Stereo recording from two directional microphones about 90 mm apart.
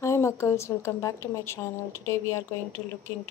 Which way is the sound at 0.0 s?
35° left (ahead or behind).